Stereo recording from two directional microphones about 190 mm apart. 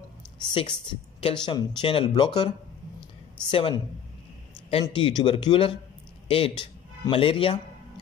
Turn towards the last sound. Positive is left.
turn(degrees=25)  # may be behind; listen again after turning